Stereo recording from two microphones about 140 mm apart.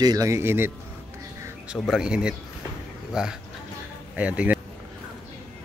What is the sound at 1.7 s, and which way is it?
Speech, centre (ahead or behind).